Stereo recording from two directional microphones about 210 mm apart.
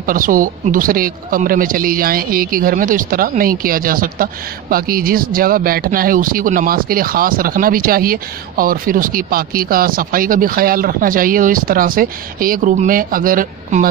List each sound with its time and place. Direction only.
0.0 s speech: 40° right (ahead or behind)